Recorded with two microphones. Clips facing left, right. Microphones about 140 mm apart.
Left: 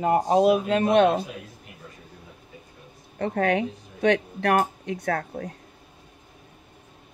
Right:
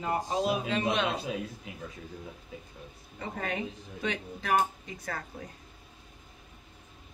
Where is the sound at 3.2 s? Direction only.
70° left (ahead or behind).